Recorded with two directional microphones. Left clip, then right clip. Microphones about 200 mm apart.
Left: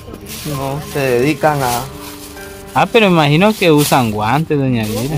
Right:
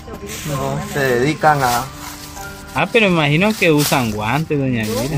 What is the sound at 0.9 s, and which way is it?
Speech, 25° left (ahead or behind).